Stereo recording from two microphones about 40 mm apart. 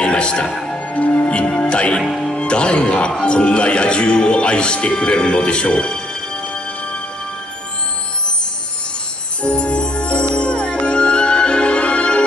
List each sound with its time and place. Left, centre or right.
0.0 s music: left
0.9 s a man's voice: left
9.4 s music: left